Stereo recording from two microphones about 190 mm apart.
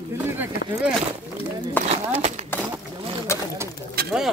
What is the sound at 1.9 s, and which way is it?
Speech, 35° right (ahead or behind).